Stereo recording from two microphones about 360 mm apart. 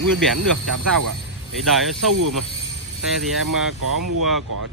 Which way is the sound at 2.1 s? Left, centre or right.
Right.